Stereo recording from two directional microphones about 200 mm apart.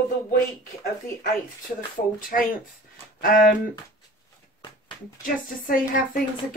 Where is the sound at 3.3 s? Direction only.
45° left (ahead or behind).